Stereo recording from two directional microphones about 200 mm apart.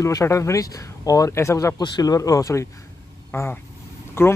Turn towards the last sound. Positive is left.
turn(degrees=10)  # may be behind; listen again after turning